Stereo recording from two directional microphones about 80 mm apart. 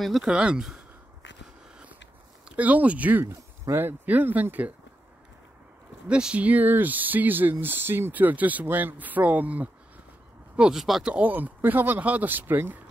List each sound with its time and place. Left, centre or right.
0.2 s speech: centre
2.4 s speech: centre
3.3 s speech: right
6.0 s speech: centre
11.1 s speech: centre